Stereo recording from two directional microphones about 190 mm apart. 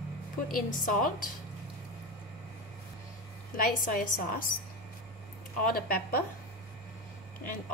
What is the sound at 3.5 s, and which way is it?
A woman's voice, 45° left (ahead or behind).